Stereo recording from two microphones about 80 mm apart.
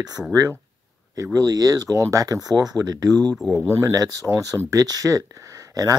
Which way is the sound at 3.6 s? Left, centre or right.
Right.